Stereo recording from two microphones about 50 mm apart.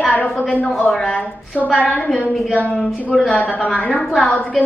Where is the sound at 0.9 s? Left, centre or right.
Centre.